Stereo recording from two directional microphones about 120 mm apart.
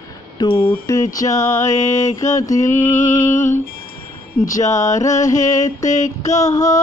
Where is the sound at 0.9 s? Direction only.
25° left (ahead or behind).